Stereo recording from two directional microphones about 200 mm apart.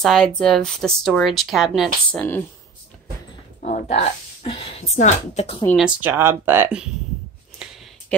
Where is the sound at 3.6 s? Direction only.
35° left (ahead or behind).